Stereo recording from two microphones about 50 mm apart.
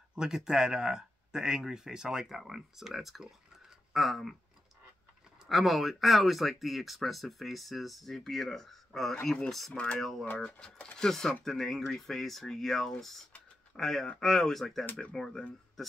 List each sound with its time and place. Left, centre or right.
0.1 s speech: centre
5.5 s speech: centre
9.8 s speech: left